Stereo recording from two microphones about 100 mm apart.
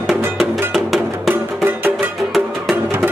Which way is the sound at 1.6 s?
20° right (ahead or behind).